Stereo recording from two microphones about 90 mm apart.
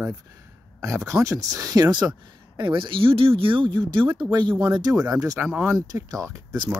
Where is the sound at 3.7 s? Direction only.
60° right (ahead or behind); by 6.6 s 40° right (ahead or behind).